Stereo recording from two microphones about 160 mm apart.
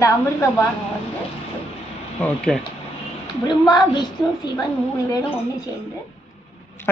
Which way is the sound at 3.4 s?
25° left (ahead or behind).